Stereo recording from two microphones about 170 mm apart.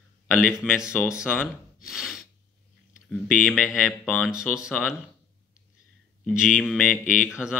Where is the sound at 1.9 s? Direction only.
5° right (ahead or behind).